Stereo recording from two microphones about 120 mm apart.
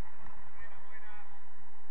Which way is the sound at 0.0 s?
35° right (ahead or behind).